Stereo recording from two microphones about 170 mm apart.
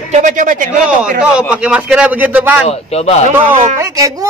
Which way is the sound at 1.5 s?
5° right (ahead or behind).